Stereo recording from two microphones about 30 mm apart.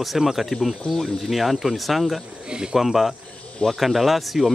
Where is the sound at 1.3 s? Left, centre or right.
Centre.